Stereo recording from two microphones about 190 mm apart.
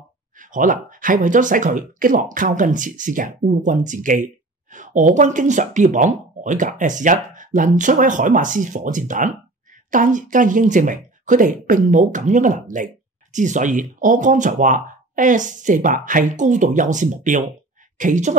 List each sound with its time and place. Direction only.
0.4 s speech: 45° right (ahead or behind)